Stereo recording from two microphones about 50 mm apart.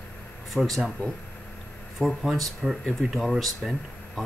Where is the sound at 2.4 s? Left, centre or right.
Centre.